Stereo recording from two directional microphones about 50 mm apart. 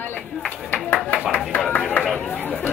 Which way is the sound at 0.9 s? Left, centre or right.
Left.